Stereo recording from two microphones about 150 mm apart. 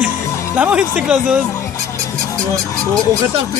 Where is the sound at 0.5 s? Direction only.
10° right (ahead or behind).